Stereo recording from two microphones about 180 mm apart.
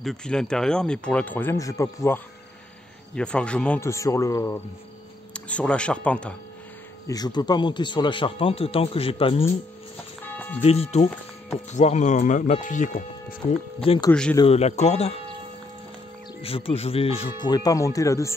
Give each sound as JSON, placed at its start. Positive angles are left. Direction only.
{"t": 0.0, "sound": "a man's voice", "side_deg": 5}
{"t": 7.1, "sound": "speech", "side_deg": 20}
{"t": 10.6, "sound": "speech", "side_deg": 35}
{"t": 13.4, "sound": "a man's voice", "side_deg": 15}
{"t": 16.4, "sound": "speech", "side_deg": 30}